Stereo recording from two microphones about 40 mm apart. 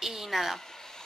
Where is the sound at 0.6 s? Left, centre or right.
Centre.